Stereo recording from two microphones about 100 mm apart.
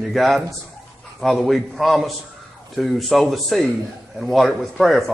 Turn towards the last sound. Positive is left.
turn(degrees=0)  # may be behind; listen again after turning